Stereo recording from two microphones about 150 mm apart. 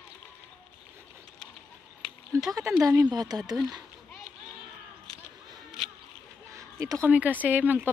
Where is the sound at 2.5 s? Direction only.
20° right (ahead or behind).